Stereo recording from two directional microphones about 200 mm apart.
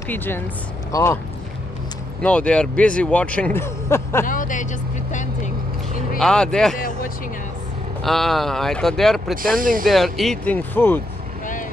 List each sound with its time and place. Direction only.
0.1 s speech: 10° left (ahead or behind)
2.2 s speech: 5° left (ahead or behind)
4.3 s vehicle: 40° left (ahead or behind)
6.1 s speech: 5° left (ahead or behind)
8.0 s speech: centre (ahead or behind)
9.6 s speech: 45° right (ahead or behind)
9.8 s speech: centre (ahead or behind)